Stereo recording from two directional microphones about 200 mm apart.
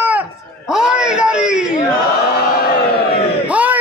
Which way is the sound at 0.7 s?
5° right (ahead or behind).